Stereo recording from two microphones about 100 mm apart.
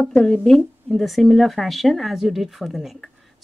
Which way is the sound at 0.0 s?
10° left (ahead or behind).